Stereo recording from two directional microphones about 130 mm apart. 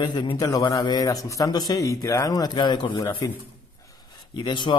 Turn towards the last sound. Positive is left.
turn(degrees=35)  # may be behind; listen again after turning